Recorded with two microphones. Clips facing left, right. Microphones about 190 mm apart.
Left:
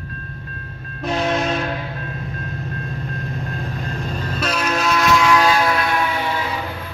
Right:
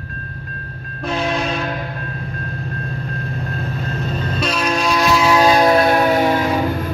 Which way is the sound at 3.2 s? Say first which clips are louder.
Right 2 dB; 15° left (ahead or behind).